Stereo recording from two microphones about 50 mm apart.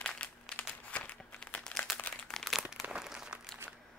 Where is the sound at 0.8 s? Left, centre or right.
Left.